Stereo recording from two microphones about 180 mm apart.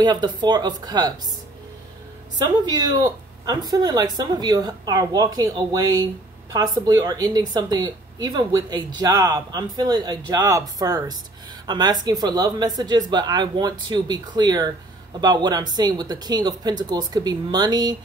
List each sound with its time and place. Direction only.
0.0 s a woman's voice: 25° right (ahead or behind)
2.3 s a woman's voice: 25° right (ahead or behind)